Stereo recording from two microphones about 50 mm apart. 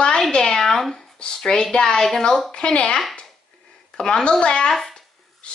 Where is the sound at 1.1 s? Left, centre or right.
Centre.